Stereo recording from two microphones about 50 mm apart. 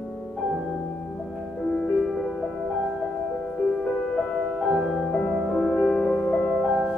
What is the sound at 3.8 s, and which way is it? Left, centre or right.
Music, centre.